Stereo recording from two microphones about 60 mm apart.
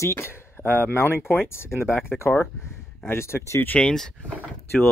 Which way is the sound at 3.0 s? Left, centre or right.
Left.